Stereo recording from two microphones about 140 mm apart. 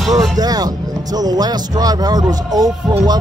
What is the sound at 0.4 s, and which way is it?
Speech, 25° right (ahead or behind).